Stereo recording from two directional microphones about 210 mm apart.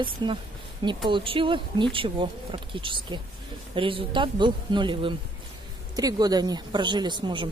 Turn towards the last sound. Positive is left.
turn(degrees=-20)  # may be behind; listen again after turning